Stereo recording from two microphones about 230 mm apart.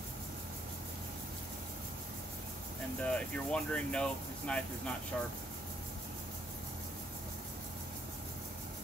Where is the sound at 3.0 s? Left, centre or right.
Centre.